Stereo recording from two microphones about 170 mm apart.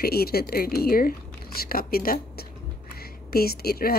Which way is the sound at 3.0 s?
65° left (ahead or behind).